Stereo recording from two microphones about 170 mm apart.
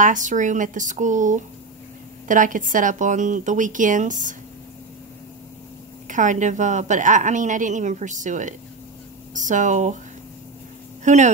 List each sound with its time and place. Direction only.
0.0 s a woman's voice: 50° right (ahead or behind)
6.0 s a woman's voice: 50° right (ahead or behind)
11.1 s a woman's voice: 45° right (ahead or behind)